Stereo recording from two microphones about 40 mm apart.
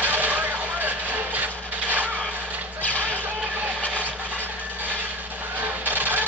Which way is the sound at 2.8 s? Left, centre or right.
Left.